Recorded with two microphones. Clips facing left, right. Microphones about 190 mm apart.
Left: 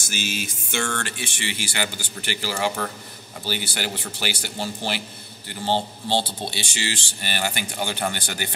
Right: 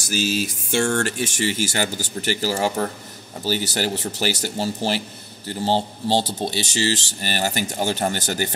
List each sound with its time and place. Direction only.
0.0 s speech: 35° right (ahead or behind)